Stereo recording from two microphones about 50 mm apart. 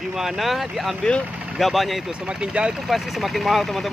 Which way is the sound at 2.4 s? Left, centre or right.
Centre.